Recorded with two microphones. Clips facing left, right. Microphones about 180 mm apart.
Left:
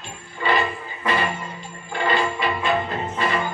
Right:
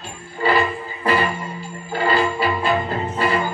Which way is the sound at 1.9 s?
35° right (ahead or behind).